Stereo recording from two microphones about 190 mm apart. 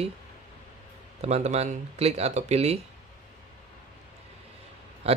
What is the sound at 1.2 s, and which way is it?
Speech, 35° right (ahead or behind).